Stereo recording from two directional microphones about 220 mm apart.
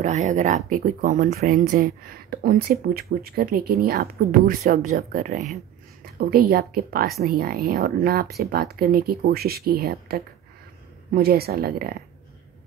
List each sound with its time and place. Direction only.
0.0 s speech: 35° right (ahead or behind)